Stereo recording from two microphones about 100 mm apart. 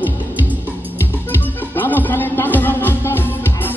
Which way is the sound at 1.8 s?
20° left (ahead or behind).